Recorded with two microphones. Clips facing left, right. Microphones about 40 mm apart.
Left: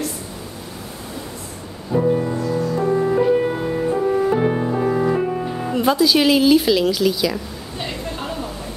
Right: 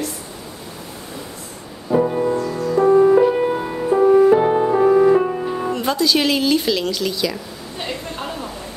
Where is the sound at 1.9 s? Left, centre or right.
Centre.